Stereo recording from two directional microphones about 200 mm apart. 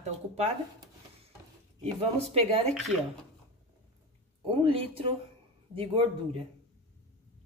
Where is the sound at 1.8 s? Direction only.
30° right (ahead or behind).